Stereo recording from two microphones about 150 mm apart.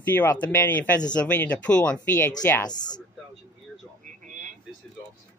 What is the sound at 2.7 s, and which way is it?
Speech, 30° left (ahead or behind).